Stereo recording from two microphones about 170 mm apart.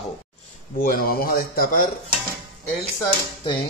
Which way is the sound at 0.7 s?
55° left (ahead or behind).